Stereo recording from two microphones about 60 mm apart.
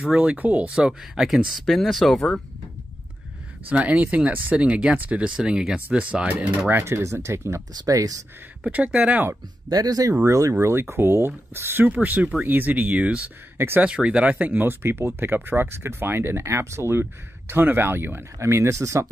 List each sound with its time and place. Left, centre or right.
0.0 s speech: centre
1.7 s speech: centre
3.6 s speech: right
6.8 s speech: right
7.8 s speech: right
8.6 s speech: centre
9.7 s speech: right
10.2 s speech: right
10.6 s speech: right
11.8 s speech: right
18.4 s speech: right